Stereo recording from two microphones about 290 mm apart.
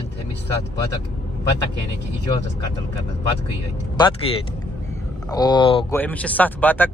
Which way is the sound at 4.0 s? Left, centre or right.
Centre.